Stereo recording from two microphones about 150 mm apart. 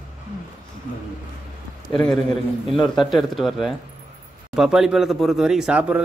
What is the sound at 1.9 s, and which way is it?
A man's voice, 5° left (ahead or behind).